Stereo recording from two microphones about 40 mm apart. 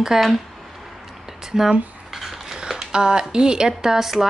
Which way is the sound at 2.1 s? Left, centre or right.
Centre.